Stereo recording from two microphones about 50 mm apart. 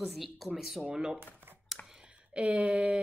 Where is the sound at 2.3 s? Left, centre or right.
Right.